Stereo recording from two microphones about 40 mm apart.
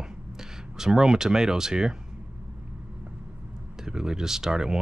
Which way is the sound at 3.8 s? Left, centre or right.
Centre.